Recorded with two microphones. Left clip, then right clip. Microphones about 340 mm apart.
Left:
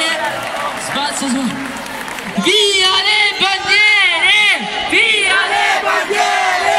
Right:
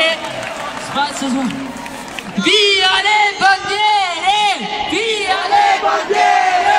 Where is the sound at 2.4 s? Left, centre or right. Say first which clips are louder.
Even; right.